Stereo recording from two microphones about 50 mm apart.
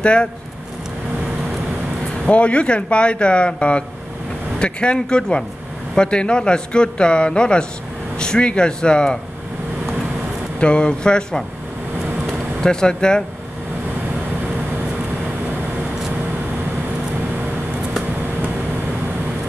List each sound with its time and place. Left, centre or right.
0.0 s speech: left
2.2 s a man's voice: left
10.6 s a man's voice: centre
12.6 s a man's voice: centre